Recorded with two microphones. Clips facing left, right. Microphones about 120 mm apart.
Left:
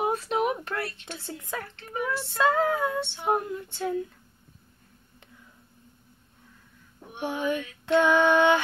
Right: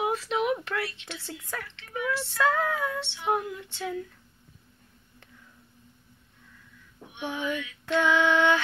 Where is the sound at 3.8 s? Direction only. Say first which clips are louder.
Left 4 dB; 25° left (ahead or behind).